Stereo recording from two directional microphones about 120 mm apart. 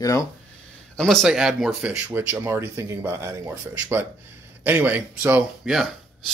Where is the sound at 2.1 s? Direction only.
20° right (ahead or behind).